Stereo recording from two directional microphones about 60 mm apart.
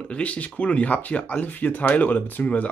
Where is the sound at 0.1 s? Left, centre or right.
Left.